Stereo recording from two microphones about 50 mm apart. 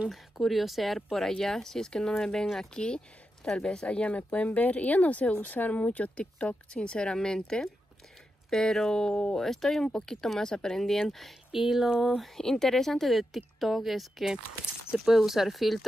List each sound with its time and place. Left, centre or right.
0.1 s speech: centre
2.7 s speech: centre
12.4 s speech: centre